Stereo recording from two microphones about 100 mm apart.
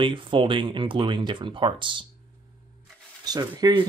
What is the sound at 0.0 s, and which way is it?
Speech, 60° right (ahead or behind).